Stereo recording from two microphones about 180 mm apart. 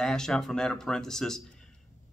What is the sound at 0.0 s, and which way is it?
Speech, 5° left (ahead or behind).